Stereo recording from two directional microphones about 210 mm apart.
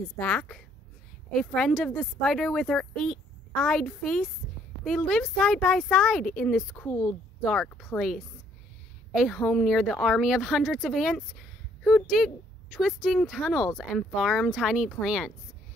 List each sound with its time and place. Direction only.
0.2 s speech: 5° left (ahead or behind)
6.9 s a woman's voice: 20° left (ahead or behind)
7.4 s speech: centre (ahead or behind)